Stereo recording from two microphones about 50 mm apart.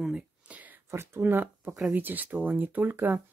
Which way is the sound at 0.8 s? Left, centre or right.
Right.